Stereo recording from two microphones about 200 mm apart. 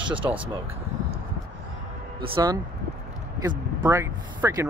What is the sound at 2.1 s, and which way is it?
Speech, 25° right (ahead or behind).